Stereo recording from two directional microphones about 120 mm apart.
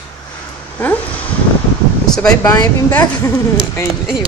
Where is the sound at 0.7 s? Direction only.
10° left (ahead or behind).